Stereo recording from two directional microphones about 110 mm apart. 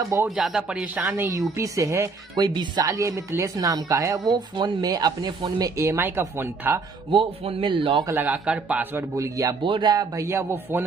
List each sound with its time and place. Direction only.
0.0 s speech: 25° right (ahead or behind)
0.3 s speech: 5° right (ahead or behind); by 2.0 s 25° right (ahead or behind)
2.3 s speech: 45° right (ahead or behind); by 6.8 s 20° right (ahead or behind)
7.1 s a man's voice: 55° right (ahead or behind)
8.2 s speech: 15° right (ahead or behind)
9.1 s speech: 30° right (ahead or behind)
9.6 s a man's voice: 45° right (ahead or behind)
10.1 s speech: 25° right (ahead or behind)